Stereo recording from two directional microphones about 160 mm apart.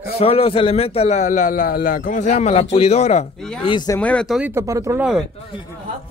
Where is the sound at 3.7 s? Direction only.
25° left (ahead or behind).